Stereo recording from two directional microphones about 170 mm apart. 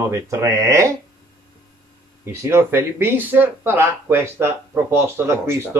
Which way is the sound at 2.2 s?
15° right (ahead or behind).